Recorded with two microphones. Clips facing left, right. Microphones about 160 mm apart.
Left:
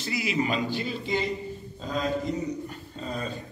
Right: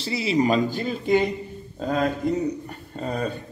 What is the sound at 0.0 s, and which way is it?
Speech, 30° right (ahead or behind).